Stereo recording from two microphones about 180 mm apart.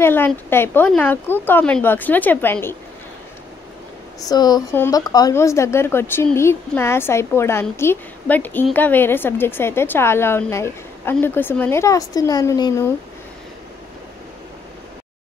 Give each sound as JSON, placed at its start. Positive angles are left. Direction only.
{"t": 0.0, "sound": "a woman's voice", "side_deg": 10}
{"t": 4.3, "sound": "a woman's voice", "side_deg": 20}